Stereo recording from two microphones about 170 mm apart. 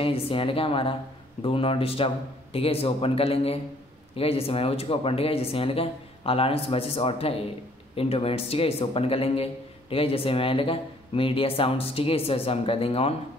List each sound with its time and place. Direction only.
0.0 s a man's voice: 35° left (ahead or behind)